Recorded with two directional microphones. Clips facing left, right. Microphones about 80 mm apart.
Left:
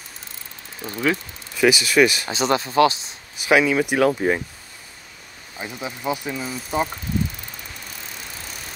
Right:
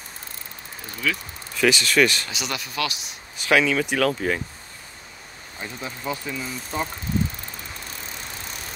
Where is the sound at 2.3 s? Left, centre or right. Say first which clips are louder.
Left 10 dB; left.